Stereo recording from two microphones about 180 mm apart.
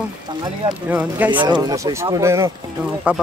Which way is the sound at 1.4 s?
20° right (ahead or behind).